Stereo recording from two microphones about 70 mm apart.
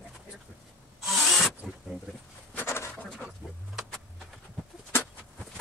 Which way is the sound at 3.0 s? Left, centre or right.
Centre.